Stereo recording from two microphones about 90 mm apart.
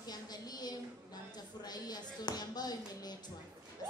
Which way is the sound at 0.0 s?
50° left (ahead or behind).